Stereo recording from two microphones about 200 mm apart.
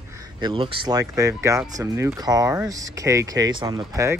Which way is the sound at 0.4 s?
25° right (ahead or behind).